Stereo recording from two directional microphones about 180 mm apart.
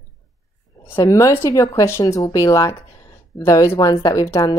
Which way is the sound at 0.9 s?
15° left (ahead or behind).